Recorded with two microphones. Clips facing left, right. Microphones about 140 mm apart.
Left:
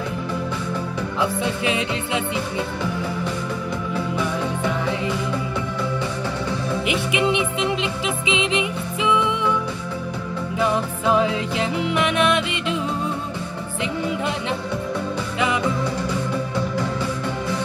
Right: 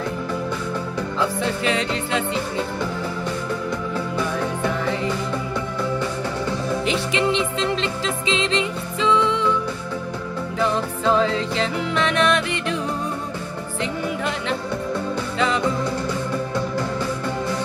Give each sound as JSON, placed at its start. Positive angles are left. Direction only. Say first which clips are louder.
{"t": 1.2, "sound": "music", "louder": "even", "side_deg": 15}
{"t": 6.9, "sound": "music", "louder": "left 1 dB", "side_deg": 15}
{"t": 10.6, "sound": "music", "louder": "even", "side_deg": 15}
{"t": 15.3, "sound": "music", "louder": "right 1 dB", "side_deg": 15}